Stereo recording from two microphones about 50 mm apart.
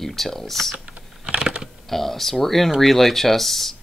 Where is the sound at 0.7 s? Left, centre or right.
Right.